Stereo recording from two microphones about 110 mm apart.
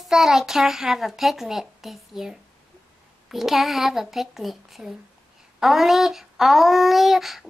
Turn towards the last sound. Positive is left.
turn(degrees=0)  # may be behind; listen again after turning